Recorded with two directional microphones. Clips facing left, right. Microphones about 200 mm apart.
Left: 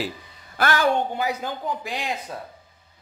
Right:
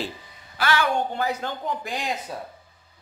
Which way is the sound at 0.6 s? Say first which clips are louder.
Left 1 dB; 45° left (ahead or behind).